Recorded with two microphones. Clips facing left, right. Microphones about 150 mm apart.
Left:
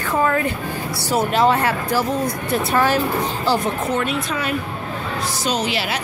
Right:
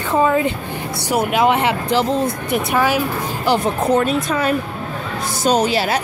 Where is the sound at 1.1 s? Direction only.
10° right (ahead or behind).